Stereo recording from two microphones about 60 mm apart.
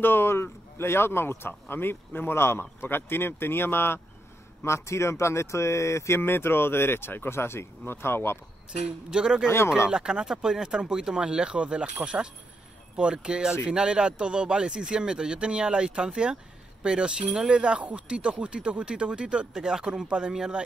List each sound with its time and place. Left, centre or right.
0.0 s speech: left
4.6 s speech: left
8.8 s speech: centre